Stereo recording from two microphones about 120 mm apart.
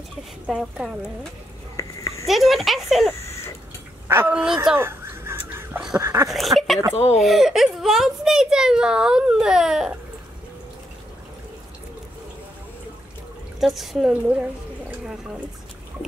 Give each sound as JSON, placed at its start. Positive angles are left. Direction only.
{"t": 0.5, "sound": "a child's voice", "side_deg": -5}
{"t": 1.8, "sound": "a sound", "side_deg": 25}
{"t": 2.2, "sound": "speech", "side_deg": 0}
{"t": 4.1, "sound": "speech", "side_deg": -15}
{"t": 4.7, "sound": "fowl", "side_deg": -20}
{"t": 5.9, "sound": "dog", "side_deg": -20}
{"t": 6.2, "sound": "a child's voice", "side_deg": 0}
{"t": 13.6, "sound": "a child's voice", "side_deg": 0}